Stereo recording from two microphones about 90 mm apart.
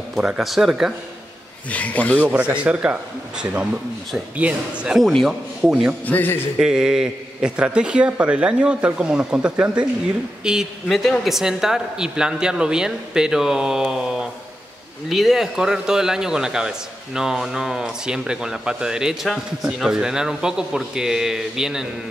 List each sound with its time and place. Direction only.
0.4 s a man's voice: 5° right (ahead or behind)
1.7 s speech: 15° left (ahead or behind)
2.2 s a man's voice: 15° right (ahead or behind)
4.9 s a man's voice: centre (ahead or behind)
6.0 s a man's voice: 20° left (ahead or behind)
6.6 s a man's voice: 10° right (ahead or behind)